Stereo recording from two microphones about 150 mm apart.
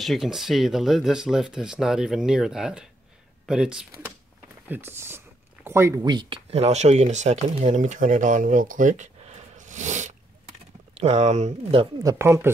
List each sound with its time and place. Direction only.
0.0 s speech: centre (ahead or behind); by 5.9 s 15° right (ahead or behind)
6.0 s speech: 30° right (ahead or behind)
12.0 s speech: 20° right (ahead or behind)